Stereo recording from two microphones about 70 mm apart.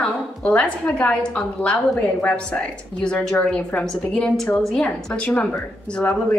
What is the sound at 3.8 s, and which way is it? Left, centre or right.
A woman's voice, centre.